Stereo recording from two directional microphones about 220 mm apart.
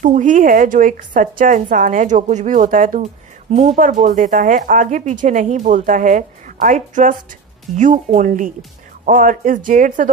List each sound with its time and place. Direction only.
0.0 s a woman's voice: 35° right (ahead or behind)